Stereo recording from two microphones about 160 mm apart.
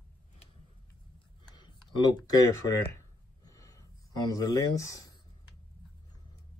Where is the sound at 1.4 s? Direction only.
25° left (ahead or behind).